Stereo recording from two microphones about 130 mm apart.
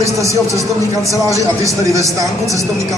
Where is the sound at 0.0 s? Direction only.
25° right (ahead or behind).